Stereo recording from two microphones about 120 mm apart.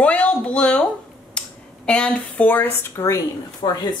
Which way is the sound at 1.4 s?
10° left (ahead or behind).